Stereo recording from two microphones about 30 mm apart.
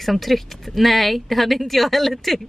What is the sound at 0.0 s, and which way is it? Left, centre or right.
A woman's voice, centre.